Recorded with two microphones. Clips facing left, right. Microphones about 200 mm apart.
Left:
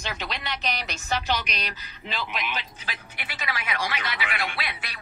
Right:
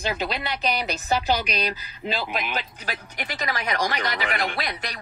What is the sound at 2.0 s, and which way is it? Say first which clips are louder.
Speech: right 4 dB; 40° right (ahead or behind).